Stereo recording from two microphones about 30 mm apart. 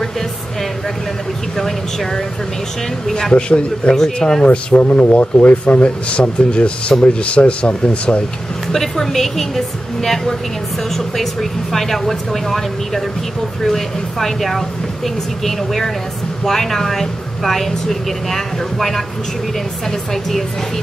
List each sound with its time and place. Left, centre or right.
1.6 s a woman's voice: centre
3.3 s speech: left
3.9 s a woman's voice: centre
4.4 s speech: left
4.7 s speech: left
8.7 s a woman's voice: centre